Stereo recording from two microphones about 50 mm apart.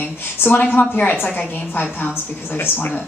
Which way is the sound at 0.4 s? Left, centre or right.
Left.